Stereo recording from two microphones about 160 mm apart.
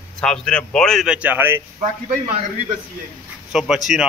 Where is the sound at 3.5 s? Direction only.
5° right (ahead or behind).